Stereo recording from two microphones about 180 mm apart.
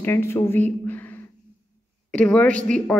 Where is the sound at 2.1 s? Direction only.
5° left (ahead or behind).